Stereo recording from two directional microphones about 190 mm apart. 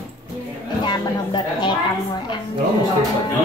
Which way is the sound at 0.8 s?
25° left (ahead or behind).